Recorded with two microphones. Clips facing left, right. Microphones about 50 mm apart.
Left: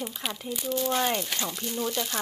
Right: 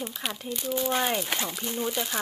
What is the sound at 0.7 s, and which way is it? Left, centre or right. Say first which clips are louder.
Speech: even; centre.